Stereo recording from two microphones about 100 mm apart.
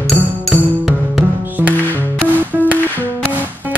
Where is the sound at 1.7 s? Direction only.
15° left (ahead or behind).